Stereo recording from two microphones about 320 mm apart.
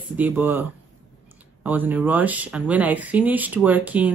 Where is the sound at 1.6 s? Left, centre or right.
Centre.